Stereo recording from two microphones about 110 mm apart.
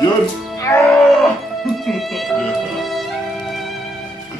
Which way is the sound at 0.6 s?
25° left (ahead or behind).